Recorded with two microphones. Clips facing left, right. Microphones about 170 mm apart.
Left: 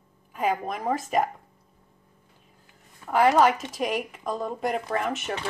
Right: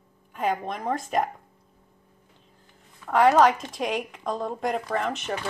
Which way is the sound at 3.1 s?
5° left (ahead or behind).